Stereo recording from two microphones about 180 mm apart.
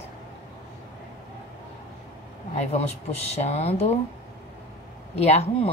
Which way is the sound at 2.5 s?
35° left (ahead or behind).